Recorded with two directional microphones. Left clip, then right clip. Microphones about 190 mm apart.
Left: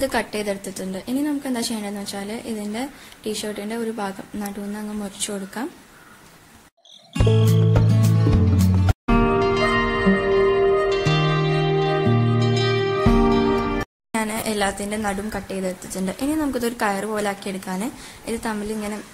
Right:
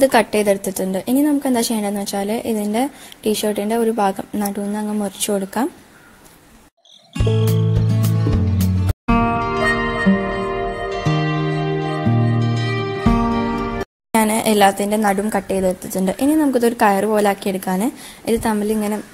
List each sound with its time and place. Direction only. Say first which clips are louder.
0.0 s a woman's voice: right 9 dB; 35° right (ahead or behind)
7.2 s music: even; centre (ahead or behind)
14.1 s a woman's voice: right 8 dB; 35° right (ahead or behind)